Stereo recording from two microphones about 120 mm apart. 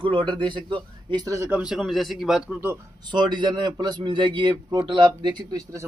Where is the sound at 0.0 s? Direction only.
40° right (ahead or behind).